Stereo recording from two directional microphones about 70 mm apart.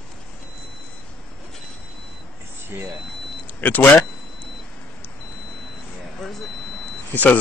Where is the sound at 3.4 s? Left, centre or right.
Left.